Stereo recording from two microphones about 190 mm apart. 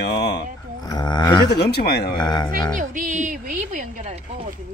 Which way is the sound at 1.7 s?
55° left (ahead or behind).